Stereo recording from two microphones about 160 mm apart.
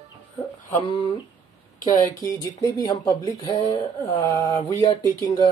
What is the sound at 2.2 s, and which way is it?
Speech, 20° left (ahead or behind).